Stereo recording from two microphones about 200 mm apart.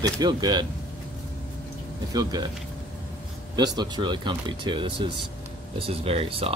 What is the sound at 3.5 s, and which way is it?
Speech, 20° right (ahead or behind).